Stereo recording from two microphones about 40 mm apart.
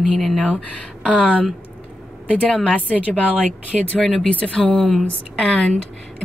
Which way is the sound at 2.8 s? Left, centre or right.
Left.